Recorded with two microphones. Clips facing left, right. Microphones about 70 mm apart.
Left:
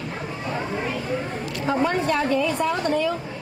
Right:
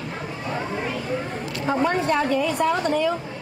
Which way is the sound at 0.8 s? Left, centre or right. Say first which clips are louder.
Even; centre.